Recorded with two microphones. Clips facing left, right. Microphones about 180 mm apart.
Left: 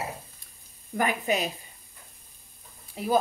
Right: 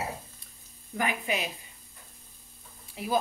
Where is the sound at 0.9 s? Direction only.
40° left (ahead or behind).